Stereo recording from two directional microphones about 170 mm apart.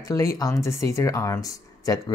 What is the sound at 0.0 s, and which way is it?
Speech, 20° left (ahead or behind).